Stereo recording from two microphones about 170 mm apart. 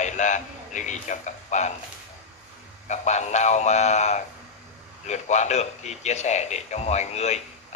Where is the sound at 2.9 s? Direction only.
40° left (ahead or behind).